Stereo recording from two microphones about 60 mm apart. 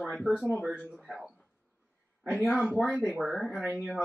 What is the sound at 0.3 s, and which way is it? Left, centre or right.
Speech, centre.